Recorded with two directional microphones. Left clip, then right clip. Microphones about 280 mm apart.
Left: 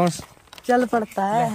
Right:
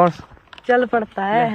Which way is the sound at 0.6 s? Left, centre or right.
Centre.